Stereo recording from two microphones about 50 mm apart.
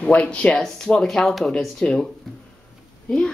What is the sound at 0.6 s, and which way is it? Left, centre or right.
Speech, centre.